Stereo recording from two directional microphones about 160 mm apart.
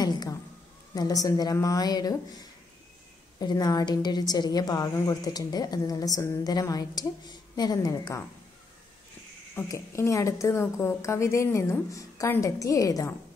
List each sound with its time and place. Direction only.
0.0 s a sound: 25° left (ahead or behind)
0.9 s a woman's voice: 20° left (ahead or behind)
9.6 s a woman's voice: 20° left (ahead or behind)